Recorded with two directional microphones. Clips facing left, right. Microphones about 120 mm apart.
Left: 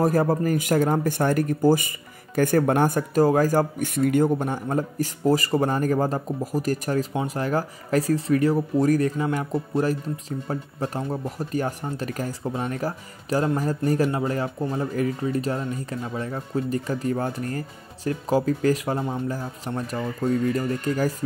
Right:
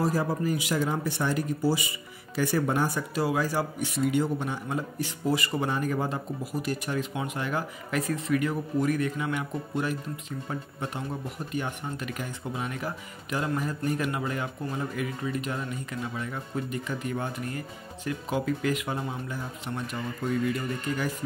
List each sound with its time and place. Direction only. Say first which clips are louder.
0.0 s speech: left 6 dB; 50° left (ahead or behind)